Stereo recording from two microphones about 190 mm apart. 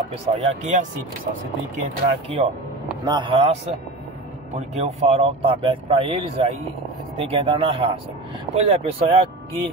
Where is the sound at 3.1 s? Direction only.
25° right (ahead or behind).